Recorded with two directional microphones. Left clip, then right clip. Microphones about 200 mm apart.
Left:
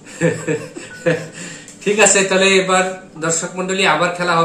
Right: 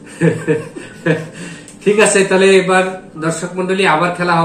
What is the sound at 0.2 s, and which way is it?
A man's voice, 20° left (ahead or behind).